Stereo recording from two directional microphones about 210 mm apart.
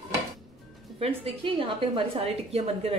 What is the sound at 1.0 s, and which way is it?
A woman's voice, 25° right (ahead or behind).